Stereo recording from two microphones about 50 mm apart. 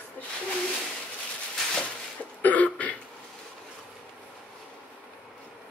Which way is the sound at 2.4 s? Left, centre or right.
Left.